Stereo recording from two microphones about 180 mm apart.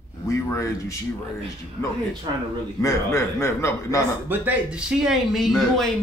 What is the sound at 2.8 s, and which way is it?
Speech, 15° left (ahead or behind).